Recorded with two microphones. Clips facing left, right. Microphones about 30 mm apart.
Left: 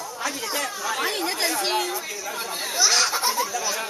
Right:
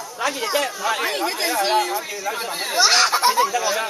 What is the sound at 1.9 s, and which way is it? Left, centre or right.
Speech, right.